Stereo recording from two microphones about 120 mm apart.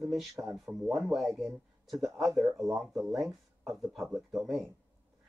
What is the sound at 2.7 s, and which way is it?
Speech, 5° right (ahead or behind).